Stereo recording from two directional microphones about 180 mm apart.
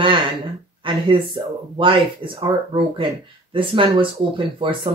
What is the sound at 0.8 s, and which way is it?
Speech, 25° right (ahead or behind).